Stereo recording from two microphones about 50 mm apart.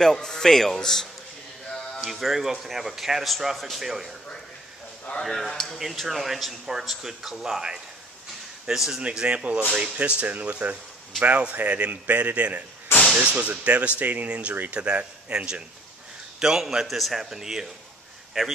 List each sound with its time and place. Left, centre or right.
0.0 s a man's voice: centre
2.0 s speech: centre
5.2 s a man's voice: centre
5.8 s a man's voice: centre
9.0 s speech: right
14.5 s speech: right
14.8 s a man's voice: right; by 17.6 s centre
18.4 s speech: centre